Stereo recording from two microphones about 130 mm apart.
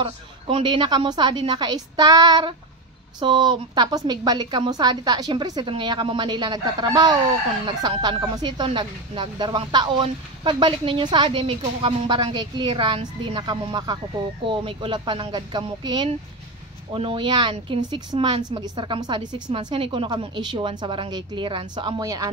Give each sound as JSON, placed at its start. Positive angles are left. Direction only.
{"t": 0.0, "sound": "speech", "side_deg": -40}